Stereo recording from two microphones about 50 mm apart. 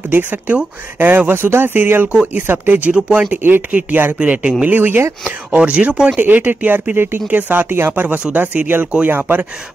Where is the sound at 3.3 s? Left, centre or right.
Right.